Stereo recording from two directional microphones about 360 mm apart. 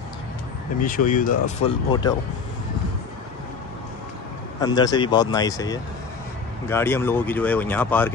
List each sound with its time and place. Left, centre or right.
0.7 s speech: left
4.6 s speech: centre